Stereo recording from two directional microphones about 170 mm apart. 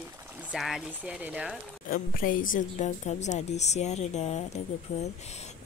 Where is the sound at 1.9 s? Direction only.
55° left (ahead or behind).